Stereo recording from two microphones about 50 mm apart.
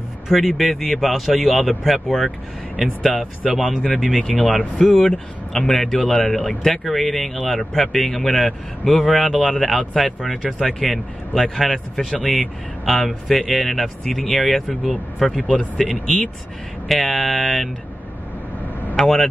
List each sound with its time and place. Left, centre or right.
0.3 s speech: centre
3.8 s speech: centre
4.9 s speech: centre
18.9 s speech: centre